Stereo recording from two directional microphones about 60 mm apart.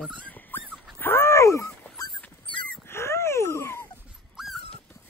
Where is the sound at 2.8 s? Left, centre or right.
Left.